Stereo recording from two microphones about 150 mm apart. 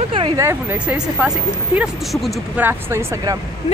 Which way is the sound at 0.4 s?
20° right (ahead or behind).